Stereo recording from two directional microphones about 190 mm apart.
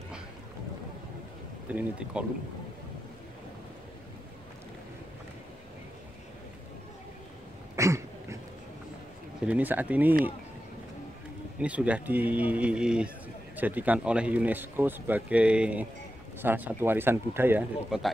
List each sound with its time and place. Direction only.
1.7 s speech: 5° right (ahead or behind)
7.7 s a sound: 15° right (ahead or behind)
9.5 s speech: 10° right (ahead or behind)
11.6 s speech: 5° right (ahead or behind)